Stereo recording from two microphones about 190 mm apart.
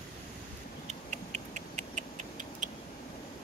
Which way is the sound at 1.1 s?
40° right (ahead or behind).